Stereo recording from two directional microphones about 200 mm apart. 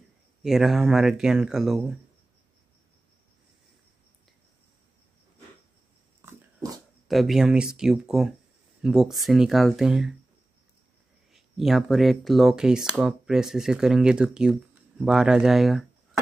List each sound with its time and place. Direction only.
0.4 s speech: centre (ahead or behind)
6.2 s dog: 20° right (ahead or behind)
7.1 s speech: centre (ahead or behind)
11.3 s speech: centre (ahead or behind)